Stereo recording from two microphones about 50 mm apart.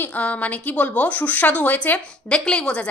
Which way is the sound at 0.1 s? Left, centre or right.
Left.